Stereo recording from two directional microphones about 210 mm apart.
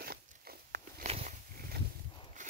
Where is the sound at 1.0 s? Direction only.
35° right (ahead or behind).